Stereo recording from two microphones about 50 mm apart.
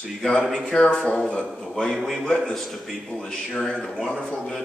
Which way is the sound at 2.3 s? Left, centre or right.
Centre.